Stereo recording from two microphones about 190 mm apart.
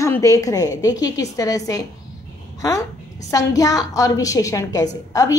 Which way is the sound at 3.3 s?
20° left (ahead or behind).